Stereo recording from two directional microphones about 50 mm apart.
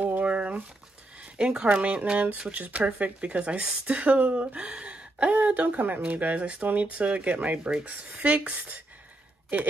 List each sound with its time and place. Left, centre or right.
0.0 s a sound: right
1.4 s speech: centre
5.5 s speech: right